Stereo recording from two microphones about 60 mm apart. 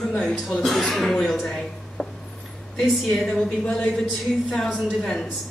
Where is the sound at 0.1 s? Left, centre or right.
Centre.